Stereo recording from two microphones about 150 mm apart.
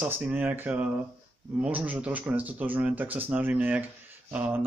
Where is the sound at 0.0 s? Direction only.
10° right (ahead or behind).